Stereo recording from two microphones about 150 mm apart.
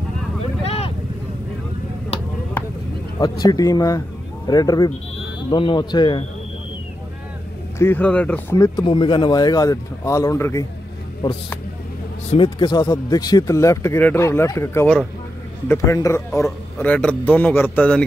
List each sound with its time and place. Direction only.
0.4 s vehicle: 40° left (ahead or behind)
3.2 s speech: 25° left (ahead or behind)
7.8 s speech: 10° left (ahead or behind)
8.5 s speech: 20° left (ahead or behind)
8.8 s speech: 30° left (ahead or behind)
12.4 s speech: 30° left (ahead or behind)
16.4 s speech: 5° left (ahead or behind)